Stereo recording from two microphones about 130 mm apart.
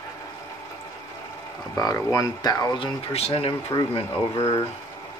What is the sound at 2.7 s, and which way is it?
Speech, 45° left (ahead or behind).